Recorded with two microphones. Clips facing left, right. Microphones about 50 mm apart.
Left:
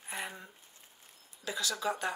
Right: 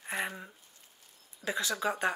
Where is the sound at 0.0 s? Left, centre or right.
Right.